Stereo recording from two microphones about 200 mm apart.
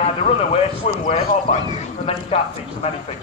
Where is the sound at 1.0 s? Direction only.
30° left (ahead or behind).